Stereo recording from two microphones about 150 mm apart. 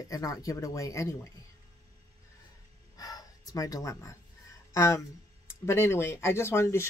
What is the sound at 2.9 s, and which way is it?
Gasp, 25° left (ahead or behind).